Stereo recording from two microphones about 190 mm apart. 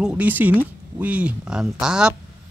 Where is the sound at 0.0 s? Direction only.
10° right (ahead or behind).